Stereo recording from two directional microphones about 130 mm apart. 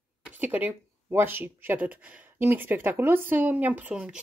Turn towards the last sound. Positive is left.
turn(degrees=-10)  # may be behind; listen again after turning